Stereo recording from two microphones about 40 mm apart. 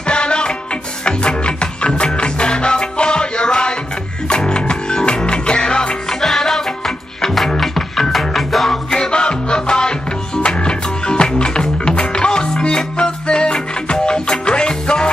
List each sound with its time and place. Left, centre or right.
0.0 s music: left
6.2 s music: centre
7.6 s music: centre
8.9 s music: left